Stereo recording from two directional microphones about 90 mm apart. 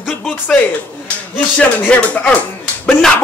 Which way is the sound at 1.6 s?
15° left (ahead or behind).